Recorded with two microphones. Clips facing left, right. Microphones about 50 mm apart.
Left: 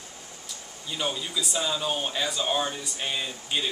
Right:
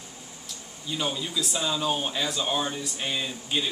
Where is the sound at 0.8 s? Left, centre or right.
Centre.